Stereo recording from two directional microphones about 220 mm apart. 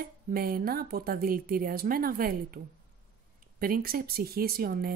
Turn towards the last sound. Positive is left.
turn(degrees=-40)  # may be behind; listen again after turning